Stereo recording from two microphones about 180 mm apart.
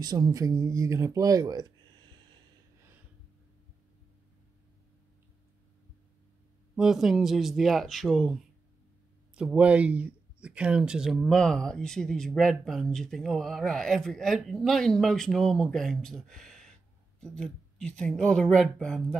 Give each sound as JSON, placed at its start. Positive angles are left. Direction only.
{"t": 0.0, "sound": "speech", "side_deg": -20}
{"t": 6.7, "sound": "speech", "side_deg": -5}